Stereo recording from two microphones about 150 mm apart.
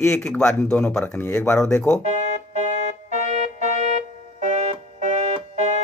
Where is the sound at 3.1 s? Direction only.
50° right (ahead or behind).